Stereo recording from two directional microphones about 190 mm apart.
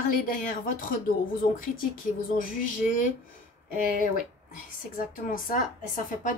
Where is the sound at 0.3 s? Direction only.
45° left (ahead or behind).